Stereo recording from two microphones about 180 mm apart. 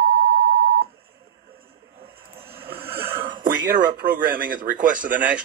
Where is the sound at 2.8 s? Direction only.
55° right (ahead or behind).